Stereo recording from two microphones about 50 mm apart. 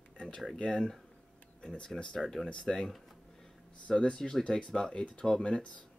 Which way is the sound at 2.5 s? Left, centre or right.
Centre.